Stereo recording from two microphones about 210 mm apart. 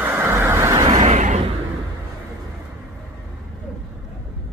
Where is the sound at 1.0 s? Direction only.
35° right (ahead or behind).